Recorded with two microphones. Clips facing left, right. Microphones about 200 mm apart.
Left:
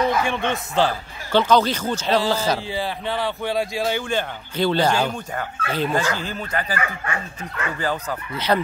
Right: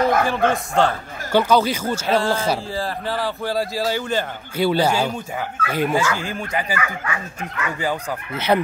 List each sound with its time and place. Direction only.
0.0 s a sound: 55° right (ahead or behind)
0.3 s speech: centre (ahead or behind)
1.3 s speech: 10° right (ahead or behind)
6.7 s speech: 35° left (ahead or behind)